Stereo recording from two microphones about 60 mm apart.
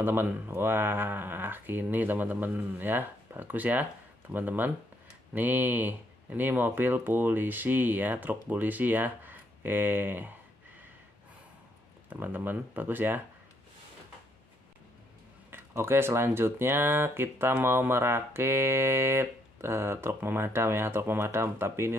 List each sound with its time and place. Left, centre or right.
0.0 s speech: right
12.1 s speech: right
15.5 s speech: right